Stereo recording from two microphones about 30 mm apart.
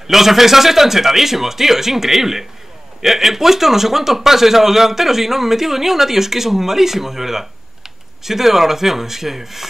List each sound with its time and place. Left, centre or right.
0.1 s a man's voice: centre